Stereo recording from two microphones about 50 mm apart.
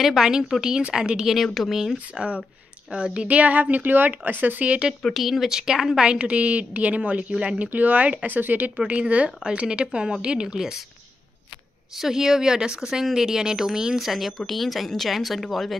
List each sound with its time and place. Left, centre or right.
0.0 s speech: centre
1.3 s speech: centre
2.9 s a woman's voice: right
5.1 s speech: centre
6.0 s a woman's voice: right
8.7 s a woman's voice: right
12.0 s speech: centre